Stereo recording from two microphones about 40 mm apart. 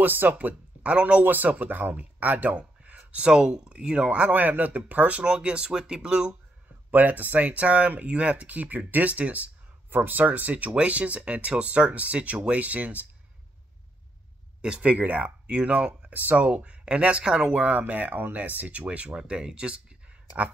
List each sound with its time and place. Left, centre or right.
0.0 s speech: right
0.8 s speech: right
1.2 s speech: right
3.3 s speech: centre
4.3 s speech: right
4.7 s speech: right
5.2 s speech: right
6.9 s speech: right
9.8 s speech: right
14.6 s speech: right
14.9 s speech: right
16.3 s speech: right
17.6 s speech: right